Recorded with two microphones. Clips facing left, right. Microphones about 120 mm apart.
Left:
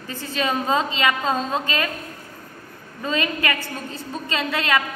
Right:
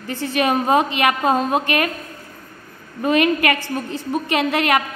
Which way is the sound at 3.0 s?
65° right (ahead or behind).